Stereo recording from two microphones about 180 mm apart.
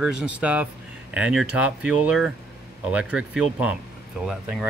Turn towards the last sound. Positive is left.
turn(degrees=-5)  # may be behind; listen again after turning